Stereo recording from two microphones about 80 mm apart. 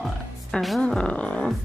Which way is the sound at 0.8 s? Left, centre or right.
Centre.